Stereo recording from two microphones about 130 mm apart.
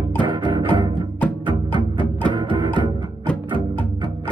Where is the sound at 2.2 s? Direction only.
35° right (ahead or behind).